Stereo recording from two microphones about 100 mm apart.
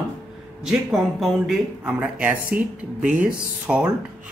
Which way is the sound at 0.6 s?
5° right (ahead or behind).